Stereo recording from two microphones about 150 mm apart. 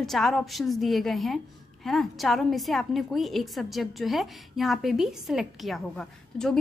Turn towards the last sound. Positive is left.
turn(degrees=5)  # may be behind; listen again after turning